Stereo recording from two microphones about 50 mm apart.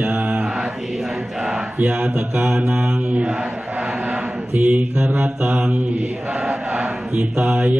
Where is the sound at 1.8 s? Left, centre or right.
Right.